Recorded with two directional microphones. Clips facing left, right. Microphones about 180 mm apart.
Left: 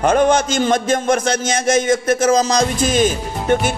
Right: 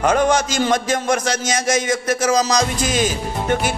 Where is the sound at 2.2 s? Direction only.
25° left (ahead or behind).